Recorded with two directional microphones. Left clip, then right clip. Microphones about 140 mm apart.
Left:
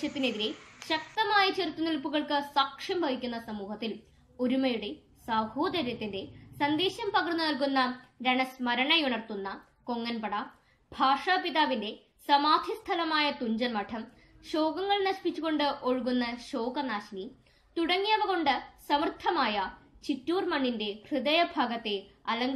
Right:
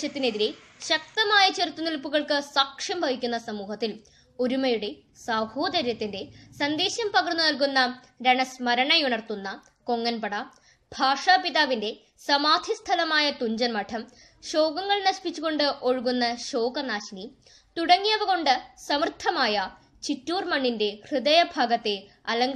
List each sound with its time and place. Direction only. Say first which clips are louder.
0.0 s a woman's voice: right 5 dB; 90° right